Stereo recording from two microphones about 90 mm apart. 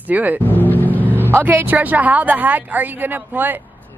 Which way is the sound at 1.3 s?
25° right (ahead or behind).